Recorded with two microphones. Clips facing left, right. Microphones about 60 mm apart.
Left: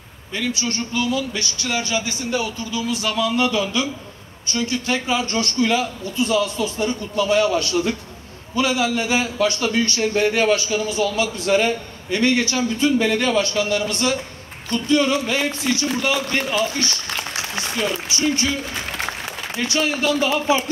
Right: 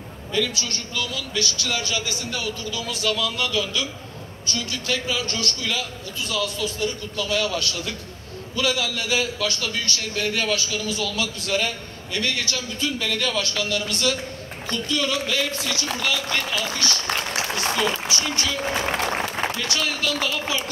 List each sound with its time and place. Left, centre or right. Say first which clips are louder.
0.3 s a man's voice: left 1 dB; left
18.1 s a man's voice: left 5 dB; left
18.6 s applause: right 4 dB; right
19.5 s a man's voice: left 4 dB; left